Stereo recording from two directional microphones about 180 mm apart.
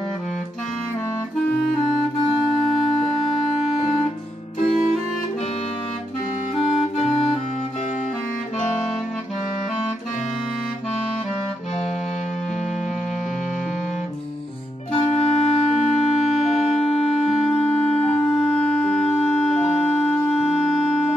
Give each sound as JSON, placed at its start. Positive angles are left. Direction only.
{"t": 3.0, "sound": "music", "side_deg": 30}
{"t": 4.6, "sound": "music", "side_deg": 45}
{"t": 6.6, "sound": "music", "side_deg": 35}
{"t": 14.9, "sound": "music", "side_deg": 35}
{"t": 17.5, "sound": "music", "side_deg": 5}
{"t": 18.4, "sound": "clarinet", "side_deg": 5}